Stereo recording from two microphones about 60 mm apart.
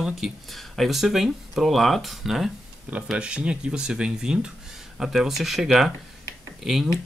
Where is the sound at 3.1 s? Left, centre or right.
Centre.